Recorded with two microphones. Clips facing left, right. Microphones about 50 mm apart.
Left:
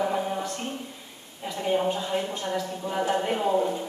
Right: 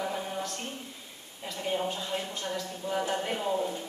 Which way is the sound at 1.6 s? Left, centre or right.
Centre.